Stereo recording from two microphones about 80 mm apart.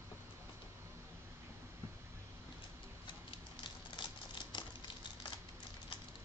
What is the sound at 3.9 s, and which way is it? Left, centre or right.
Crumpling, left.